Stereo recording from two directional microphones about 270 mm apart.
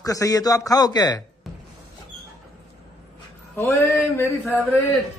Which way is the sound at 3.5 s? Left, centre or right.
Centre.